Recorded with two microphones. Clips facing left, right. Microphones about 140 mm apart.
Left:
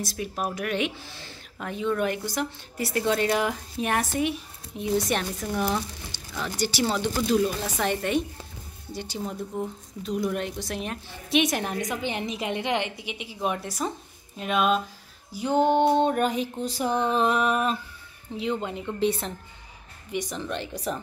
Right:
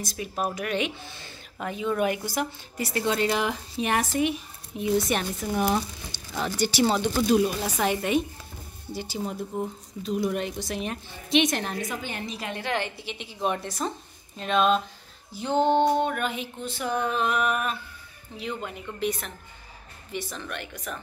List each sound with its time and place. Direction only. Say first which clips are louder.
0.0 s a woman's voice: even; centre (ahead or behind); by 7.0 s 20° right (ahead or behind)
7.6 s speech: right 1 dB; 5° right (ahead or behind); by 15.9 s 10° left (ahead or behind)
15.9 s female singing: left 3 dB; 30° left (ahead or behind)
18.4 s speech: left 5 dB; 20° left (ahead or behind)
20.1 s speech: left 4 dB; 15° left (ahead or behind); by 21.0 s 30° left (ahead or behind)